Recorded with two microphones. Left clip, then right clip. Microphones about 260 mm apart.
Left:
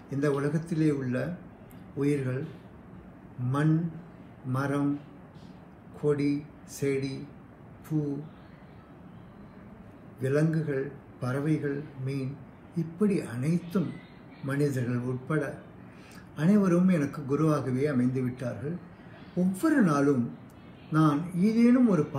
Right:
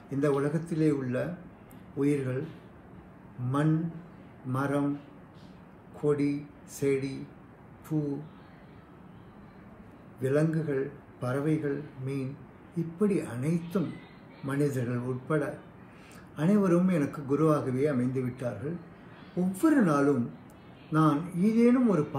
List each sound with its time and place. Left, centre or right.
0.1 s a man's voice: centre
4.5 s a man's voice: centre
6.0 s a man's voice: centre
10.2 s a man's voice: centre